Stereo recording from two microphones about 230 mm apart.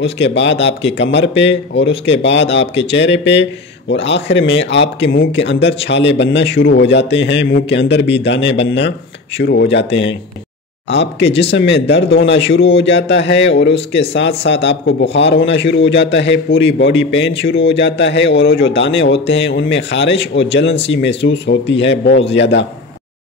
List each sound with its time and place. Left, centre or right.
0.2 s speech: left